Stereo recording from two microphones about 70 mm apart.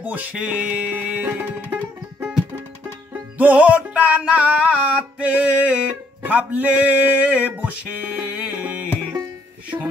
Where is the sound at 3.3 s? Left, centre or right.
Right.